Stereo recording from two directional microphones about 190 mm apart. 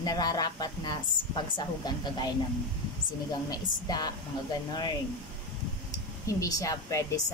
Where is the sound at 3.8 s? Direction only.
20° left (ahead or behind).